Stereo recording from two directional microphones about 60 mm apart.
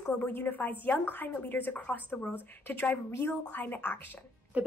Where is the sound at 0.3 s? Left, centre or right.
Left.